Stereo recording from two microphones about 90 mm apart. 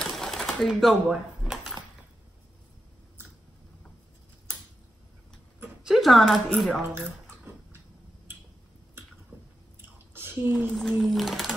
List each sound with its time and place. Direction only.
0.0 s typewriter: 5° left (ahead or behind)
5.9 s speech: centre (ahead or behind)
9.8 s chewing: 25° right (ahead or behind)
10.7 s speech: 5° left (ahead or behind)